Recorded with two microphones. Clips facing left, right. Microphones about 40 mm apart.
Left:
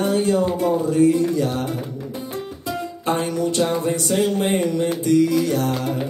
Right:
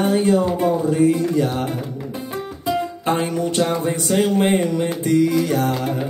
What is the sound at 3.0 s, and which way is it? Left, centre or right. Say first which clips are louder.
Music: left 1 dB; right.